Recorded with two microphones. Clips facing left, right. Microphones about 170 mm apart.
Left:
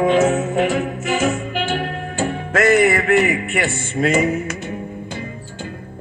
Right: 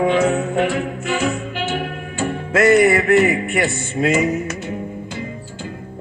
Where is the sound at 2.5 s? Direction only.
35° right (ahead or behind).